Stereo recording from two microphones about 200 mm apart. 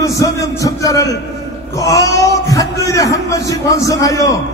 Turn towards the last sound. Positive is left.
turn(degrees=15)  # may be behind; listen again after turning